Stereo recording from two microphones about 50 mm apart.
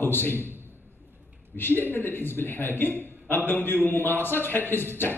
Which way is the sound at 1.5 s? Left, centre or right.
Left.